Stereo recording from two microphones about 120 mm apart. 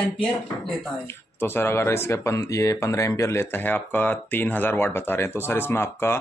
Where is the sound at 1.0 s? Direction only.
20° left (ahead or behind).